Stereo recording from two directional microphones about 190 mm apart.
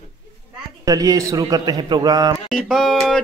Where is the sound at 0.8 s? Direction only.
20° right (ahead or behind).